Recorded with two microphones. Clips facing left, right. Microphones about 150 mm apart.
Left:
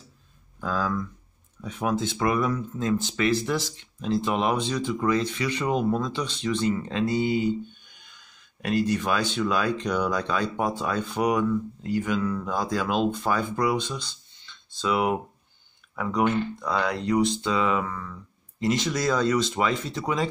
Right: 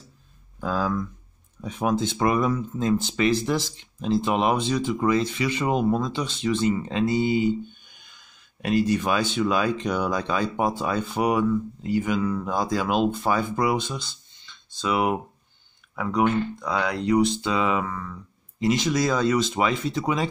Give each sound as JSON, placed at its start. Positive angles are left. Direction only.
{"t": 0.6, "sound": "speech", "side_deg": -20}
{"t": 8.6, "sound": "speech", "side_deg": -15}